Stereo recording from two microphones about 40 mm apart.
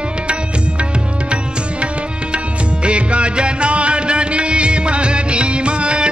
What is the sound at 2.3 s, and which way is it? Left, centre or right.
Music, right.